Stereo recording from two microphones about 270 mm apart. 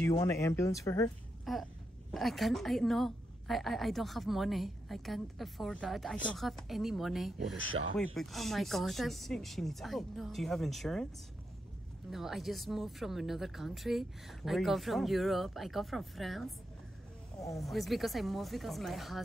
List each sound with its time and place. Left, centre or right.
0.0 s speech: centre
1.4 s a sound: centre
2.1 s speech: centre
7.6 s speech: right
7.9 s speech: centre
12.1 s speech: centre
17.6 s speech: centre